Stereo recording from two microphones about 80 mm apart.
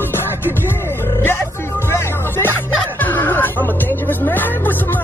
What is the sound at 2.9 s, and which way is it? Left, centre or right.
Speech, left.